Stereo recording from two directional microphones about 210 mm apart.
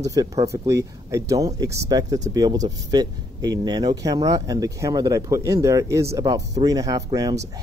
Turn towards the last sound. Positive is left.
turn(degrees=-15)  # may be behind; listen again after turning